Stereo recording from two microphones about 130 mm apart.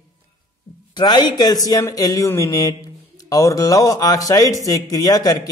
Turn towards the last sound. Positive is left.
turn(degrees=30)  # may be behind; listen again after turning